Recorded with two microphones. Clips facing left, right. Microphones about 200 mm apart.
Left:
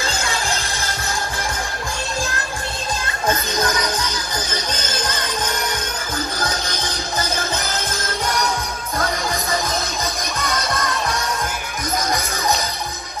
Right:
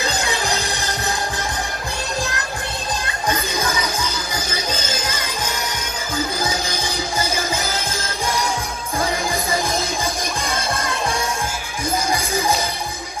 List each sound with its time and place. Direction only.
0.0 s music: 20° right (ahead or behind)
3.3 s music: 10° right (ahead or behind)
10.4 s music: 30° right (ahead or behind)
12.1 s music: 10° right (ahead or behind)